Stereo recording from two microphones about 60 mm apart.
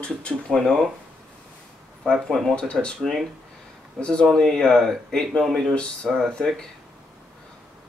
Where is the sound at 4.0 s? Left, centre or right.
Centre.